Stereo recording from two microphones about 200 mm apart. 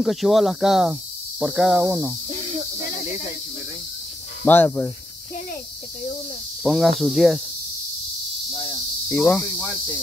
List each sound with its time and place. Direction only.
0.0 s speech: centre (ahead or behind)
4.5 s speech: 10° left (ahead or behind)
6.6 s speech: centre (ahead or behind)
8.5 s cricket: 25° left (ahead or behind)
9.1 s speech: 5° left (ahead or behind)